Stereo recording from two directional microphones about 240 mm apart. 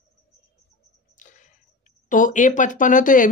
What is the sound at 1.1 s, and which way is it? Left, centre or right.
Speech, left.